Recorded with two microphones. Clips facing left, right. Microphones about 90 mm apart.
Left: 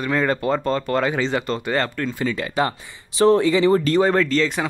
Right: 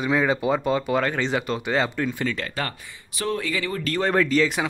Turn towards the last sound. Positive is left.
turn(degrees=-5)  # may be behind; listen again after turning